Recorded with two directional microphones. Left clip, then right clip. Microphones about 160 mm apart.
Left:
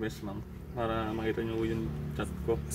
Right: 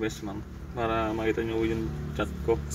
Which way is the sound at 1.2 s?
35° left (ahead or behind).